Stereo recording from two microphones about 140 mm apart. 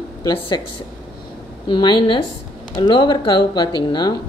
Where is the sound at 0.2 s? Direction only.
35° left (ahead or behind).